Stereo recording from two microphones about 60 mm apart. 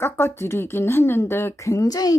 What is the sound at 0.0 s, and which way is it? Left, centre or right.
Speech, left.